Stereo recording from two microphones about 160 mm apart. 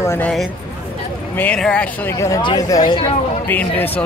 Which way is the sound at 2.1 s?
20° left (ahead or behind).